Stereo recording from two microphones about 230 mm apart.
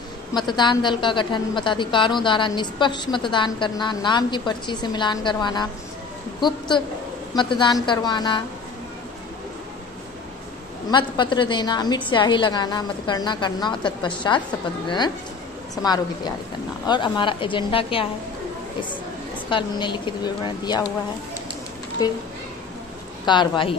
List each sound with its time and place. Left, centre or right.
0.3 s a woman's voice: centre
7.3 s a woman's voice: centre
10.9 s a woman's voice: centre
15.7 s a woman's voice: centre
19.5 s a woman's voice: left
22.0 s a woman's voice: centre
23.2 s a woman's voice: centre